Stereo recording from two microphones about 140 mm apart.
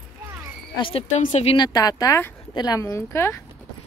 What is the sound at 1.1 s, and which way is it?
Speech, 55° left (ahead or behind).